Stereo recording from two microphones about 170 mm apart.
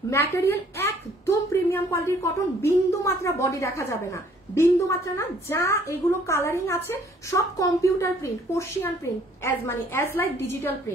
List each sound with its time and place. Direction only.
0.1 s a woman's voice: 15° left (ahead or behind)
1.2 s a sound: 15° left (ahead or behind)
2.6 s a woman's voice: 15° left (ahead or behind)